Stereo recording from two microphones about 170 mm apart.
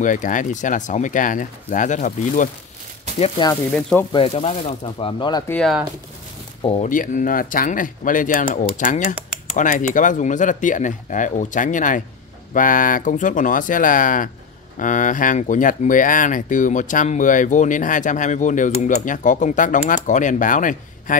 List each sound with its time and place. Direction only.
0.0 s speech: 50° left (ahead or behind)
3.2 s speech: 30° left (ahead or behind)
4.3 s speech: 40° left (ahead or behind)
5.5 s speech: centre (ahead or behind)
6.8 s speech: 50° left (ahead or behind)